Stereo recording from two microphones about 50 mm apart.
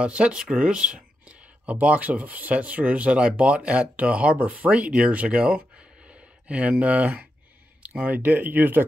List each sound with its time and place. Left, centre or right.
0.0 s speech: right
8.0 s speech: right